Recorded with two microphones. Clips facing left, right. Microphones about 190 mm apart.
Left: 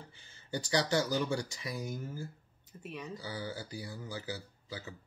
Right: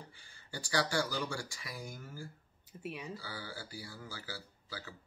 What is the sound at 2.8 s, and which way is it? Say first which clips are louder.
Speech: even; 5° right (ahead or behind).